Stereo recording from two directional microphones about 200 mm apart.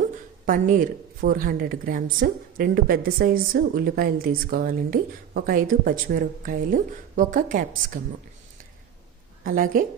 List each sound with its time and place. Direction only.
0.5 s a woman's voice: 40° right (ahead or behind)
9.4 s a woman's voice: 45° right (ahead or behind)